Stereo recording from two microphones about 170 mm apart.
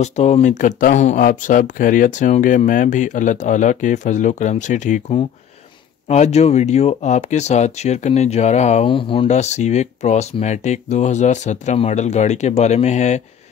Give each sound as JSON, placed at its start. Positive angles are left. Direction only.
{"t": 0.0, "sound": "speech", "side_deg": 40}